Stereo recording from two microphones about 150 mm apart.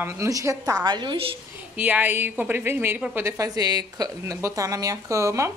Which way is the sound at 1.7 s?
10° right (ahead or behind).